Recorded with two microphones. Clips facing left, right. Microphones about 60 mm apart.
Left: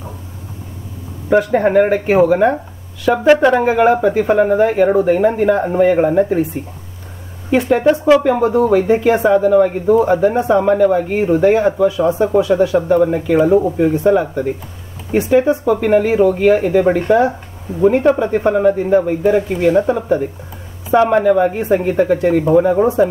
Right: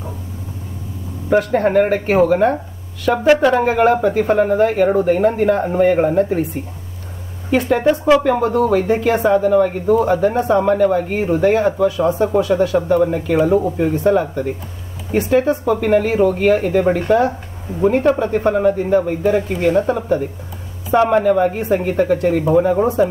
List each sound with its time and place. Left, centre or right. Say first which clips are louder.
1.3 s speech: left 2 dB; centre
8.2 s speech: left 2 dB; centre
19.3 s speech: left 3 dB; left
19.9 s speech: left 2 dB; centre